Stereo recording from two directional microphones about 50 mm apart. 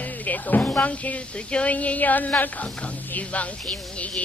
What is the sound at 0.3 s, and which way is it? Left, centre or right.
Music, left.